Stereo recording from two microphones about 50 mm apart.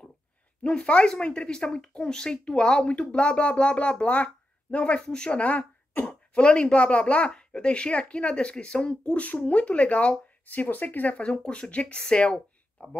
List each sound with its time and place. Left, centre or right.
0.6 s speech: centre; by 11.1 s left
11.4 s speech: centre
12.8 s speech: left